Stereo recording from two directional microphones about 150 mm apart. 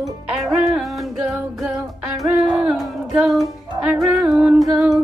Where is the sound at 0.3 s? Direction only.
Centre (ahead or behind).